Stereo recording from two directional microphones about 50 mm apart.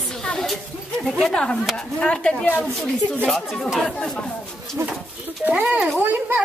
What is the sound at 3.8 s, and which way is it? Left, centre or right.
Speech, centre.